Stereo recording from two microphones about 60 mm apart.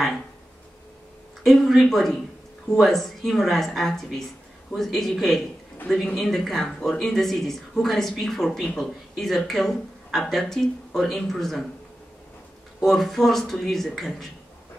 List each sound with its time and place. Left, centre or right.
1.4 s speech: centre
12.8 s speech: centre